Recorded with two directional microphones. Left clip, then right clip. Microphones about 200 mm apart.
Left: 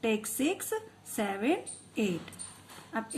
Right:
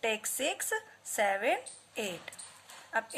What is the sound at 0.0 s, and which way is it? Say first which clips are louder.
A woman's voice: left 1 dB; 25° right (ahead or behind).